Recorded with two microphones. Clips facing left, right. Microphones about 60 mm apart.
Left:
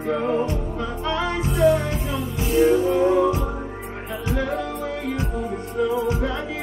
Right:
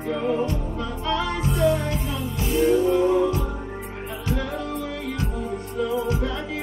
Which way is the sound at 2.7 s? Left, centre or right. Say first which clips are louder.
Left 1 dB; left.